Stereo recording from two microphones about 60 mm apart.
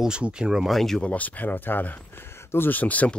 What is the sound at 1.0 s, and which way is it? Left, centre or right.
Speech, left.